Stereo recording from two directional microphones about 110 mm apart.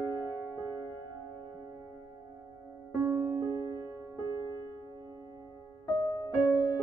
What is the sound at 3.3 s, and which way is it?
Music, 40° right (ahead or behind).